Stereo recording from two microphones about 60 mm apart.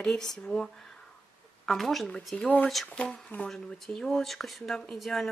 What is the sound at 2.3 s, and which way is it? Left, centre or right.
Speech, left.